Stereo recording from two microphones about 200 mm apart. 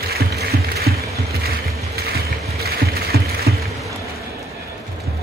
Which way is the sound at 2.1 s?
50° right (ahead or behind).